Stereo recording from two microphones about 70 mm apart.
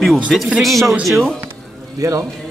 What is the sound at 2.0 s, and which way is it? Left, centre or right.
Speech, right.